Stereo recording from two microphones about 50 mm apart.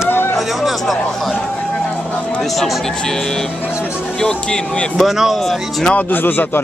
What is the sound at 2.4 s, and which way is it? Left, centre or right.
A man's voice, centre.